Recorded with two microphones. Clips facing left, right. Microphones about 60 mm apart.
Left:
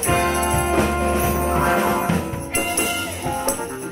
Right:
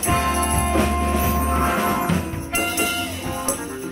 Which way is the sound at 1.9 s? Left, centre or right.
Left.